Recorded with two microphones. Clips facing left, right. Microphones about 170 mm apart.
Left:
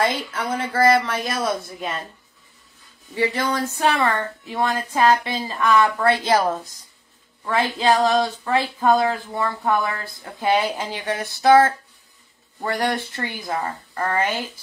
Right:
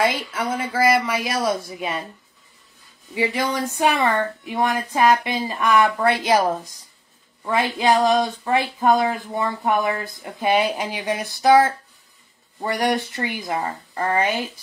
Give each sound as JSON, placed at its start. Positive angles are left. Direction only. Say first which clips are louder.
{"t": 0.0, "sound": "speech", "louder": "right 1 dB", "side_deg": -10}
{"t": 3.6, "sound": "speech", "louder": "right 1 dB", "side_deg": -15}